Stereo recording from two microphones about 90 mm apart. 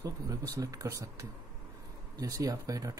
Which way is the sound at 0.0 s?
40° right (ahead or behind).